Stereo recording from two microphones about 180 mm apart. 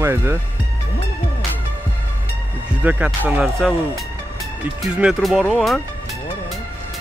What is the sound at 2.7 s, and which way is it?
Speech, 5° right (ahead or behind).